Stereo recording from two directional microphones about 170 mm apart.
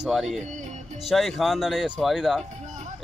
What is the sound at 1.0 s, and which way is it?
Speech, centre (ahead or behind).